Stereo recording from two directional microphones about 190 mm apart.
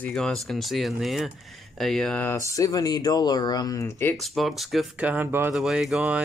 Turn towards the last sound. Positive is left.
turn(degrees=-5)  # may be behind; listen again after turning